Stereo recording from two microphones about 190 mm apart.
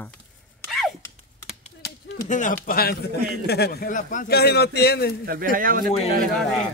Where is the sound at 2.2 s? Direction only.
40° left (ahead or behind).